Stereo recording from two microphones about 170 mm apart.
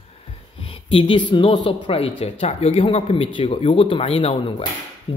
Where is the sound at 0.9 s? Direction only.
30° left (ahead or behind).